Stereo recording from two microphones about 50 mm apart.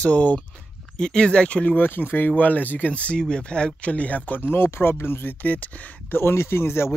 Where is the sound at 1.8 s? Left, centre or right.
Left.